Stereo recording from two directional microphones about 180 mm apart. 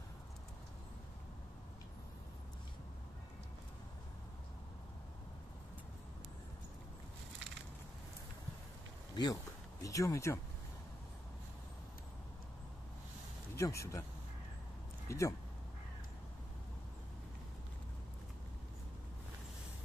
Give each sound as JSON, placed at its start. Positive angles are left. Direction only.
{"t": 9.1, "sound": "speech", "side_deg": 20}
{"t": 13.6, "sound": "speech", "side_deg": 15}
{"t": 15.0, "sound": "speech", "side_deg": 15}